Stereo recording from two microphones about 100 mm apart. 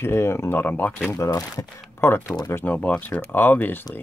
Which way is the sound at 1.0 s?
30° left (ahead or behind).